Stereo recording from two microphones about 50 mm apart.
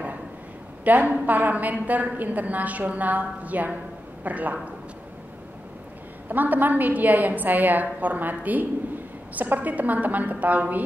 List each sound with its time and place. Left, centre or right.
0.8 s a woman's voice: right
6.2 s a woman's voice: right